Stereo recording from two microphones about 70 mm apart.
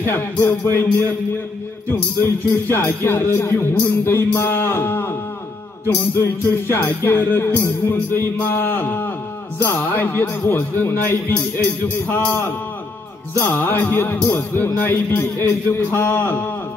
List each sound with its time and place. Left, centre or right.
0.5 s music: left
2.2 s music: left
6.1 s music: left
10.5 s a man's voice: left
13.4 s a man's voice: left
14.2 s music: left